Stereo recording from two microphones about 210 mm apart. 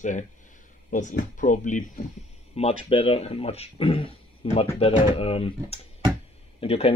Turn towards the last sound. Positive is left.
turn(degrees=25)  # may be behind; listen again after turning